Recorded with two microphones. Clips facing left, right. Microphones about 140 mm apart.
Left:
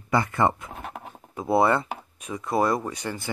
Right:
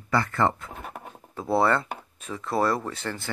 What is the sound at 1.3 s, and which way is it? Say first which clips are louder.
Speech: left 2 dB; 20° left (ahead or behind).